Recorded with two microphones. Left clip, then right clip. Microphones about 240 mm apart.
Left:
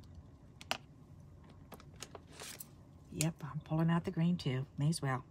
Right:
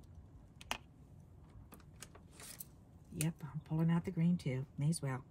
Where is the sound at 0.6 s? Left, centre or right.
Centre.